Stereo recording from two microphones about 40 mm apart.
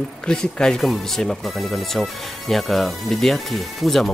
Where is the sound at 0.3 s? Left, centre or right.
Centre.